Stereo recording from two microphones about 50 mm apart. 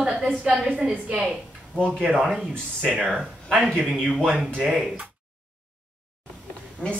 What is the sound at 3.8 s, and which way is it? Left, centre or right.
Speech, centre.